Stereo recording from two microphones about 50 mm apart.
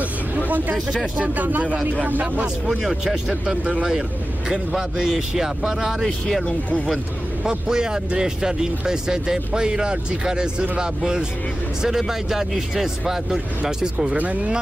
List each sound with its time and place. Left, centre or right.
1.2 s speech: right
2.4 s speech: centre
6.0 s speech: centre
7.4 s speech: centre
14.1 s speech: right